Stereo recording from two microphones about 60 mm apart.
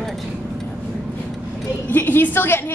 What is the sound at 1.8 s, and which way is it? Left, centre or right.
Speech, left.